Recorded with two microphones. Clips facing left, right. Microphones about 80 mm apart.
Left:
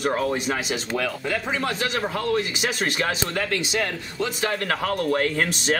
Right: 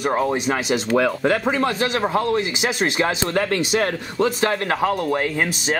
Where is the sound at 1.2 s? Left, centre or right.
Right.